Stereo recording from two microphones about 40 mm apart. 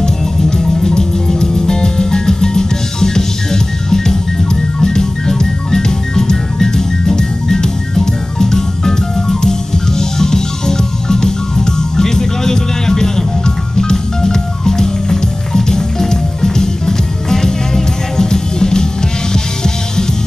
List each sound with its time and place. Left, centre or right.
0.0 s music: centre